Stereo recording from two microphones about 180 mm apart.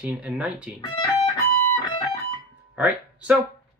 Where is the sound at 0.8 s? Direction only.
25° left (ahead or behind).